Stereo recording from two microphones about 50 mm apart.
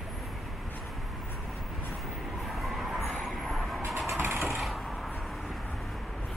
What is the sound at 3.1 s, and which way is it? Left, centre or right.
Vehicle, centre.